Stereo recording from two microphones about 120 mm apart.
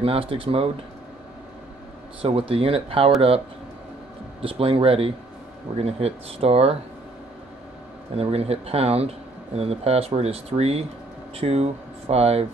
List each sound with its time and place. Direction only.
0.0 s speech: 50° right (ahead or behind)
2.2 s speech: 50° right (ahead or behind)
4.4 s speech: 50° right (ahead or behind)
8.2 s speech: 55° right (ahead or behind)